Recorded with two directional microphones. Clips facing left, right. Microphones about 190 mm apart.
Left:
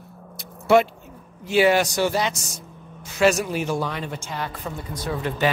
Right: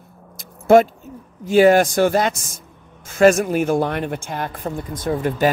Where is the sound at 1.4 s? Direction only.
45° right (ahead or behind).